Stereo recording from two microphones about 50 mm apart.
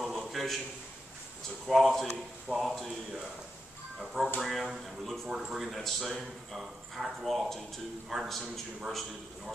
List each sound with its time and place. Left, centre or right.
0.0 s a sound: centre
1.7 s speech: centre
5.3 s speech: centre